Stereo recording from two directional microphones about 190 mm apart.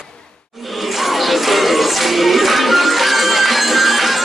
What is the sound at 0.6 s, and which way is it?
Music, centre (ahead or behind).